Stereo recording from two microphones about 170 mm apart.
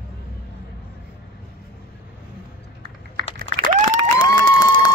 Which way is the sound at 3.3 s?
55° right (ahead or behind).